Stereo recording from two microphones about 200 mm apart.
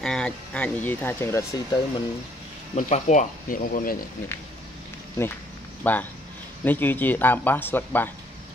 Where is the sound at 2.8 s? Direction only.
35° left (ahead or behind).